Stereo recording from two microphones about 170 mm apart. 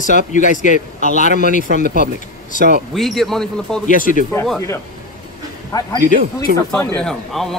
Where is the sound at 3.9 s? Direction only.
50° left (ahead or behind).